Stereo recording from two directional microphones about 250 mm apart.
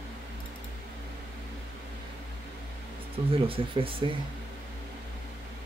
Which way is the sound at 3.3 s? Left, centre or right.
Right.